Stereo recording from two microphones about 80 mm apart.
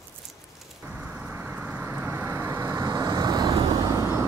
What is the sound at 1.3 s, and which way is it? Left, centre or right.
Vehicle, right.